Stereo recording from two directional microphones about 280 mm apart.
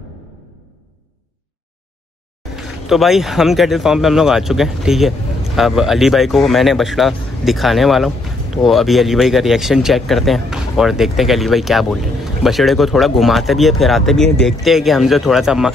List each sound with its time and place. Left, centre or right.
2.5 s speech: centre